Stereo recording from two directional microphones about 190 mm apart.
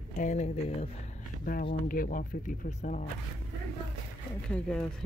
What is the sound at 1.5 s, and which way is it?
Speech, 45° left (ahead or behind).